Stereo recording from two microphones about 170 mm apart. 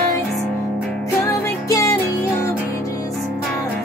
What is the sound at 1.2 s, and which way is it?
Music, 20° left (ahead or behind).